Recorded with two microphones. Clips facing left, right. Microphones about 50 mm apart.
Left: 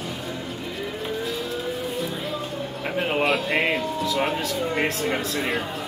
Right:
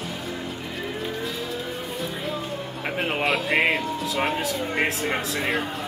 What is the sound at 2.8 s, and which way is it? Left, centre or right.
Speech, centre.